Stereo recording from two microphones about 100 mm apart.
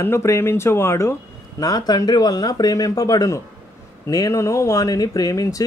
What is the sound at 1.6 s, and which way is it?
Speech, 40° left (ahead or behind).